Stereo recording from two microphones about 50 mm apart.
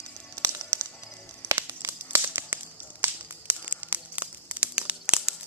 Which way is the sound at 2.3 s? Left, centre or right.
Right.